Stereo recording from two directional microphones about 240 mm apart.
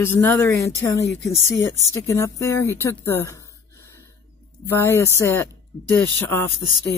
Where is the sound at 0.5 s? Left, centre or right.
Left.